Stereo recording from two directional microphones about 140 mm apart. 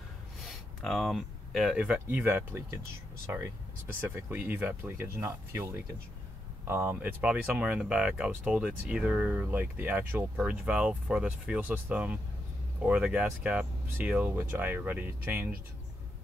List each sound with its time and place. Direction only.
0.5 s speech: centre (ahead or behind); by 15.5 s 15° right (ahead or behind)